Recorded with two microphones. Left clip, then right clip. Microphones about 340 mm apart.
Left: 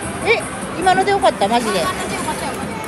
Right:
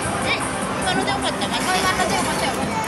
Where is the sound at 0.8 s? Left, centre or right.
Centre.